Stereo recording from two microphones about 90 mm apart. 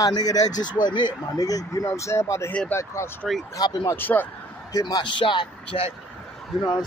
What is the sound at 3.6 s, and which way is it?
Speech, 50° left (ahead or behind).